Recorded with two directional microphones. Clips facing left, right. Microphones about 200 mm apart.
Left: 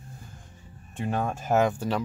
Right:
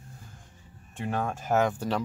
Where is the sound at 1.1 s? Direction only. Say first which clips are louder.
Left 2 dB; 20° left (ahead or behind).